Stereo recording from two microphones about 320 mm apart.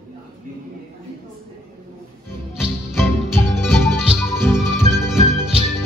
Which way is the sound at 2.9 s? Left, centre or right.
Centre.